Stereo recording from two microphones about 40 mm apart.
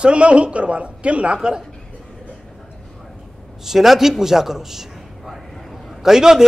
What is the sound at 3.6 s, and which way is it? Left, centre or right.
A man's voice, centre.